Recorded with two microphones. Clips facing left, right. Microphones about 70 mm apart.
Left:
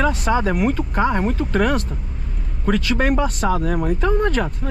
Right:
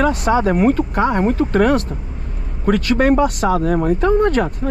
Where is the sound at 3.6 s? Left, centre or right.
Right.